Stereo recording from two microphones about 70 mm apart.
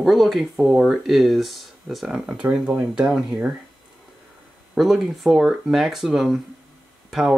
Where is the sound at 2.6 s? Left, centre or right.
Centre.